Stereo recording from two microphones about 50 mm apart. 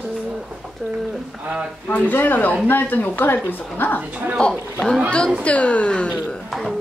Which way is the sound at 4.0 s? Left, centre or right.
Right.